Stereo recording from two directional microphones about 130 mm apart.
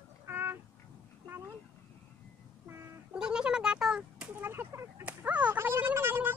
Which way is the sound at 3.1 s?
5° right (ahead or behind).